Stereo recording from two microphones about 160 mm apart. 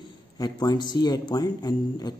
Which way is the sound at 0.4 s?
25° left (ahead or behind).